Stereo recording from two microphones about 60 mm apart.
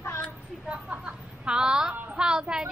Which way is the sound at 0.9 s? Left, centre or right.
Centre.